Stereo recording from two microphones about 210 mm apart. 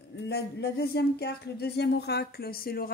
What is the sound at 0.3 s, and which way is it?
Speech, 50° left (ahead or behind).